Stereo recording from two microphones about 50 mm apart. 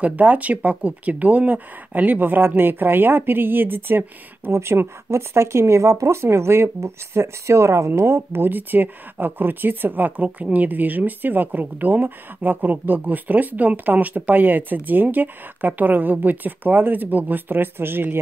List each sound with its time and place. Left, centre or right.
0.0 s speech: right
4.5 s speech: right